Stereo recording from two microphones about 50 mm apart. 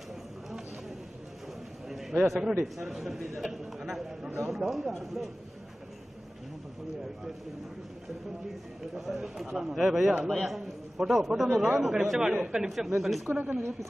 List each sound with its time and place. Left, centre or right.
1.9 s a sound: centre
2.6 s a man's voice: centre
8.9 s a man's voice: centre
13.3 s a woman's voice: right